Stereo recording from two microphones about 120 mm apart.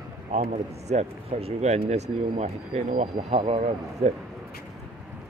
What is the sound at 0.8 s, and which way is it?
Speech, 60° right (ahead or behind).